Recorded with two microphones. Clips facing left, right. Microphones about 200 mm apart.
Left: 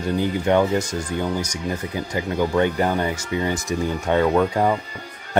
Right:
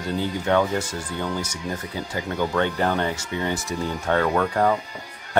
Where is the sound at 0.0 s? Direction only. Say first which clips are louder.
Left 4 dB; 15° left (ahead or behind).